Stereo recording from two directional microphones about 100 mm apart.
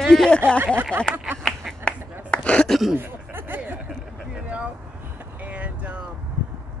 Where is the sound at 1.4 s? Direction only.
5° left (ahead or behind).